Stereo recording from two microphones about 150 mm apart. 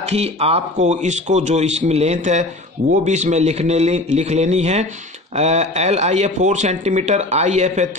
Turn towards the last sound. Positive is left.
turn(degrees=-50)  # may be behind; listen again after turning